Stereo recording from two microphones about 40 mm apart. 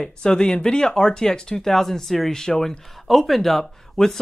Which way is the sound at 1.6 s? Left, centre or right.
Centre.